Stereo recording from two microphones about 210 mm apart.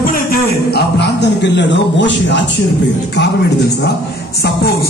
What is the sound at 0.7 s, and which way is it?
A man's voice, 55° left (ahead or behind).